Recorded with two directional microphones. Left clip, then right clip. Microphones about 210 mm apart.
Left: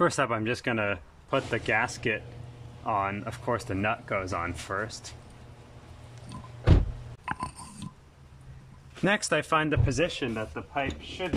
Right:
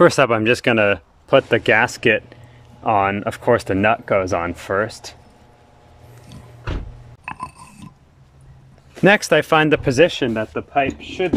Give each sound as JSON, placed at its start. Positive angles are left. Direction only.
{"t": 0.0, "sound": "speech", "side_deg": -45}
{"t": 7.2, "sound": "mechanisms", "side_deg": -5}
{"t": 8.9, "sound": "speech", "side_deg": -40}